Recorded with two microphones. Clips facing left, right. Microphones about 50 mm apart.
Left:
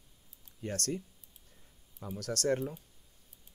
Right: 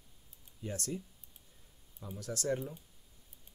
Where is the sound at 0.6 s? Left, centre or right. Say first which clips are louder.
Left 4 dB; left.